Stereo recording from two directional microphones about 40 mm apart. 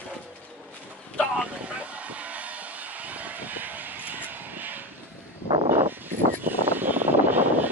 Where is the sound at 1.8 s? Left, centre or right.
Right.